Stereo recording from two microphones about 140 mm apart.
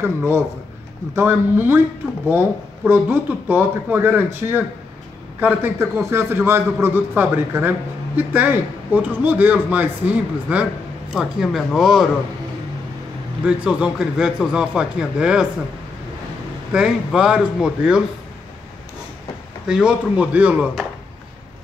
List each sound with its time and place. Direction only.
0.0 s speech: 20° right (ahead or behind); by 12.1 s centre (ahead or behind)
13.5 s speech: 5° right (ahead or behind)
16.7 s speech: 5° right (ahead or behind)
19.7 s speech: 5° right (ahead or behind)